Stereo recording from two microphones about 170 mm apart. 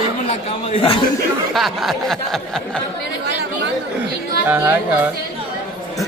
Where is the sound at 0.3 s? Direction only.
35° left (ahead or behind).